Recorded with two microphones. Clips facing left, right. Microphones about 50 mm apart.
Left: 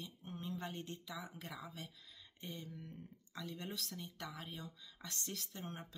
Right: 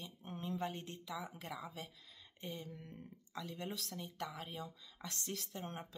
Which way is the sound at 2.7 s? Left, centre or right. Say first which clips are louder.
Even; right.